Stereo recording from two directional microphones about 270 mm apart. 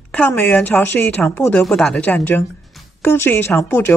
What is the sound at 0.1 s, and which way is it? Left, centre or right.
A woman's voice, centre.